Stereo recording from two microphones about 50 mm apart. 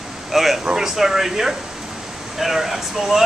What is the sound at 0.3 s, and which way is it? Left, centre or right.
Speech, centre.